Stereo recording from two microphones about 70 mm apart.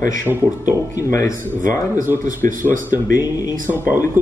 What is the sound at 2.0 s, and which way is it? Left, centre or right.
Speech, right.